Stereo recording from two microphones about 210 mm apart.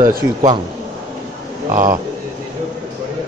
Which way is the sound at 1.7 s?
40° right (ahead or behind).